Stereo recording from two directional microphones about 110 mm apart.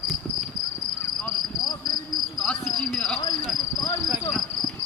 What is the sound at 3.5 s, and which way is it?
Cricket, 40° left (ahead or behind).